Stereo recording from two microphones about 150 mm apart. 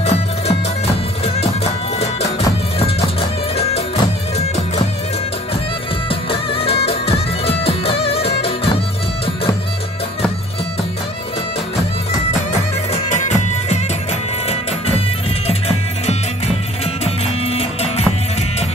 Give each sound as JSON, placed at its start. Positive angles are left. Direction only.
{"t": 0.0, "sound": "music", "side_deg": 45}
{"t": 3.5, "sound": "music", "side_deg": 40}
{"t": 6.0, "sound": "music", "side_deg": 40}
{"t": 12.9, "sound": "music", "side_deg": 50}
{"t": 16.1, "sound": "music", "side_deg": 45}